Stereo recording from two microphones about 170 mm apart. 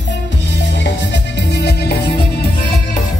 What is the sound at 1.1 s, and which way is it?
Music, 80° left.